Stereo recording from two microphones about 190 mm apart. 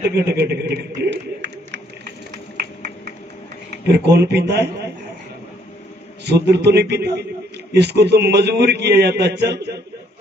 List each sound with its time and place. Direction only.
0.1 s speech: 60° right (ahead or behind)
2.5 s a sound: 55° right (ahead or behind)
3.8 s a man's voice: 60° right (ahead or behind)
6.2 s a man's voice: 60° right (ahead or behind)